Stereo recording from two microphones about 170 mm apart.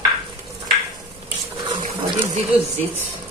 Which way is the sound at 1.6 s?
30° right (ahead or behind).